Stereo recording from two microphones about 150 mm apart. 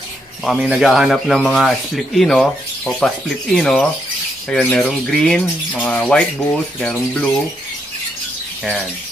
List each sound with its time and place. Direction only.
0.5 s speech: 5° right (ahead or behind)